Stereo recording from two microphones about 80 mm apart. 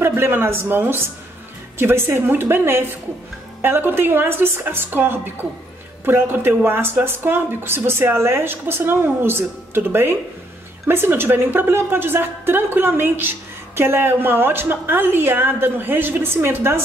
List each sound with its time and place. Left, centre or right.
0.0 s a woman's voice: right